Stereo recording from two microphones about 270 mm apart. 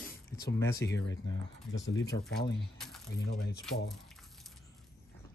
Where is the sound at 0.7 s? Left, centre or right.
Left.